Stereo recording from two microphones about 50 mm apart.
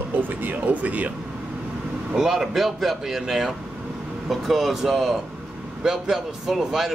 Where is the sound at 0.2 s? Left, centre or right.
Right.